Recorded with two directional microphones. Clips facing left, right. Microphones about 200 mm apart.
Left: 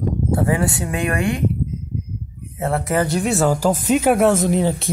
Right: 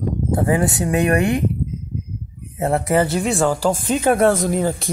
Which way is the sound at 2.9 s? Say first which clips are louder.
Even; 5° right (ahead or behind).